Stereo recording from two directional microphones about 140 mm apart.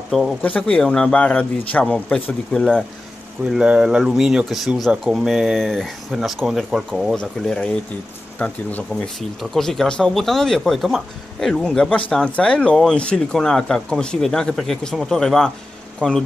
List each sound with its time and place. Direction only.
0.4 s speech: 10° left (ahead or behind)
3.4 s speech: 5° right (ahead or behind)